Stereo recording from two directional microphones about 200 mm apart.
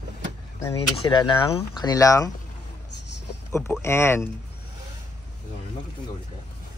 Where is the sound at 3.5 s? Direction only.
10° left (ahead or behind).